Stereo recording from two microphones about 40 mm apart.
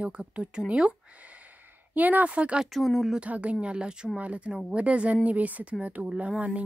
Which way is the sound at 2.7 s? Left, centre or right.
Centre.